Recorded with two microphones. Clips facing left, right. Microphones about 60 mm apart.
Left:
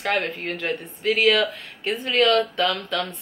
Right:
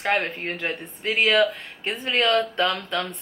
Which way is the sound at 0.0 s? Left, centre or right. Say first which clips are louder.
Even; right.